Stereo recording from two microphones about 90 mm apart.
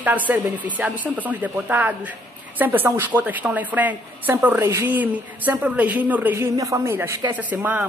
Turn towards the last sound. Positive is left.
turn(degrees=-20)  # may be behind; listen again after turning